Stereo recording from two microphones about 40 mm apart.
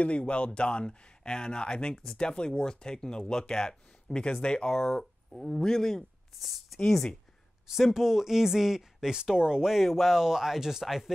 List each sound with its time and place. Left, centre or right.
0.2 s speech: left; by 6.0 s centre
6.4 s speech: centre
6.8 s speech: centre
7.7 s speech: centre
9.7 s speech: centre